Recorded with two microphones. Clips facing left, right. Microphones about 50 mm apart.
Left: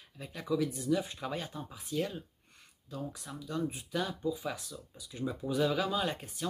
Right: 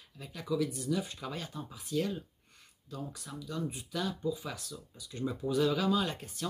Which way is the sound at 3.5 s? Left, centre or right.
Left.